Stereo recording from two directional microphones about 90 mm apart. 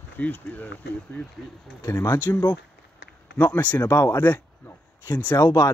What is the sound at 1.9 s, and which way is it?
Speech, 20° left (ahead or behind).